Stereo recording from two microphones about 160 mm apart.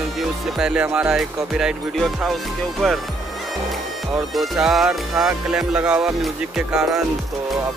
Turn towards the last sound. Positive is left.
turn(degrees=-5)  # may be behind; listen again after turning